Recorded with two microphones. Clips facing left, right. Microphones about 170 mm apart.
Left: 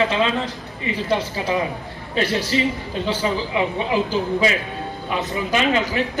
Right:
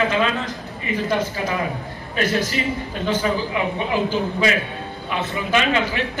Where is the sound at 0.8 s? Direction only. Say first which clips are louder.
Even; 20° left (ahead or behind).